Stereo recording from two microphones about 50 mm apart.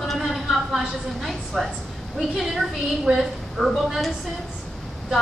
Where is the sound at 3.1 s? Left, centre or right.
Centre.